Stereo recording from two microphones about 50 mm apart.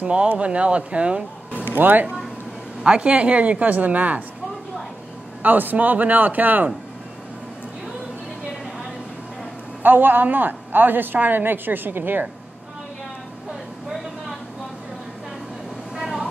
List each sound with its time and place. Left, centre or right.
0.0 s speech: right
1.7 s a man's voice: right
2.8 s speech: right
5.4 s a woman's voice: right
9.8 s a woman's voice: right
16.0 s vehicle: centre